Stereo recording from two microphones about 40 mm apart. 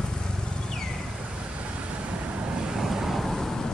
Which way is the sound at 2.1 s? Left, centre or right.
Right.